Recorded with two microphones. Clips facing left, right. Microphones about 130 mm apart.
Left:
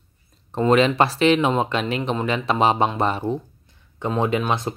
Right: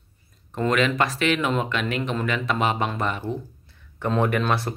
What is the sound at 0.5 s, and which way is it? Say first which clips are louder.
Speech: left 5 dB; 30° left (ahead or behind).